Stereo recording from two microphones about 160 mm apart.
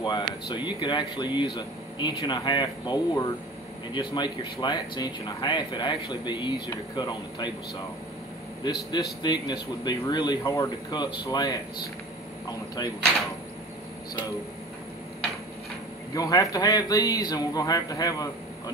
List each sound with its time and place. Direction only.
0.0 s speech: 30° left (ahead or behind)
8.6 s speech: 25° left (ahead or behind)
16.1 s speech: 20° left (ahead or behind)